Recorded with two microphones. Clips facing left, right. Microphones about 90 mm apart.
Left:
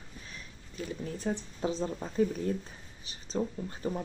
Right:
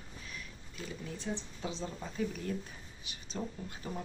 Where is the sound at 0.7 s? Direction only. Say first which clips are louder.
Left 6 dB; 40° left (ahead or behind).